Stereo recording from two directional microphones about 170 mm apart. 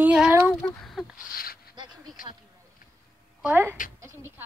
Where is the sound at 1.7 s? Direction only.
25° right (ahead or behind).